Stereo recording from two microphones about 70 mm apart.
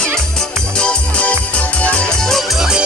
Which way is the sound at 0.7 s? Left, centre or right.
Centre.